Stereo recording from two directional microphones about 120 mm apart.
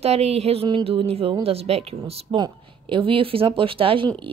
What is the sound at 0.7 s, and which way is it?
Speech, 45° right (ahead or behind).